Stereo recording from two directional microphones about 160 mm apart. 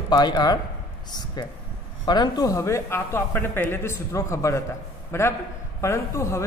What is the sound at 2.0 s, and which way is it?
A man's voice, 25° left (ahead or behind).